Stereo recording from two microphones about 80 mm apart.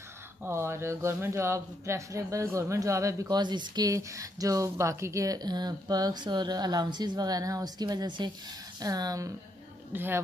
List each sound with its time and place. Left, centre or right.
0.5 s speech: right
3.3 s speech: right
3.9 s speech: right
8.8 s speech: right
9.9 s a woman's voice: right